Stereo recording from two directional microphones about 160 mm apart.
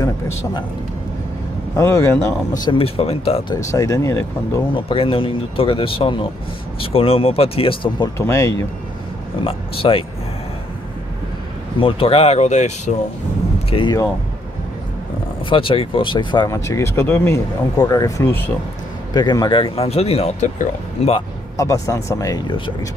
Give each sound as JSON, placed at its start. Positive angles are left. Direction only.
{"t": 1.8, "sound": "speech", "side_deg": 20}
{"t": 3.6, "sound": "speech", "side_deg": 20}
{"t": 4.7, "sound": "speech", "side_deg": 35}
{"t": 8.2, "sound": "speech", "side_deg": 20}
{"t": 9.4, "sound": "speech", "side_deg": 35}
{"t": 11.8, "sound": "speech", "side_deg": 35}
{"t": 13.7, "sound": "speech", "side_deg": 35}
{"t": 15.5, "sound": "speech", "side_deg": 35}
{"t": 16.4, "sound": "speech", "side_deg": 20}
{"t": 19.1, "sound": "speech", "side_deg": 25}
{"t": 21.5, "sound": "speech", "side_deg": 20}